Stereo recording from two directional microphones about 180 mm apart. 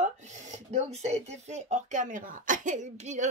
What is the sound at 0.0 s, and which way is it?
Speech, 40° right (ahead or behind).